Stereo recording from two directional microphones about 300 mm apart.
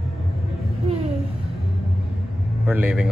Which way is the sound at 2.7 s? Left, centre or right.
Centre.